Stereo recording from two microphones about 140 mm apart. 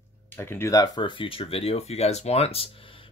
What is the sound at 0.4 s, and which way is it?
Speech, 15° left (ahead or behind).